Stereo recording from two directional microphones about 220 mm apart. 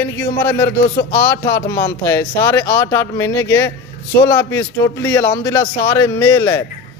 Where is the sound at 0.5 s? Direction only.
20° left (ahead or behind).